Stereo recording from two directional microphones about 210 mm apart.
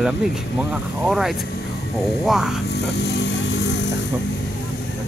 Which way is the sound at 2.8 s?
55° left (ahead or behind).